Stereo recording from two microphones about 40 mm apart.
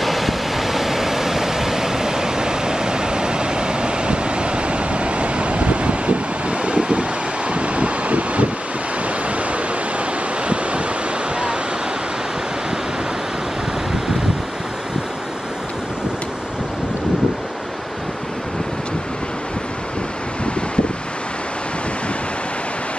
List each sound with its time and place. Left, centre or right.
0.0 s waves: centre; by 6.1 s right
6.6 s wind: right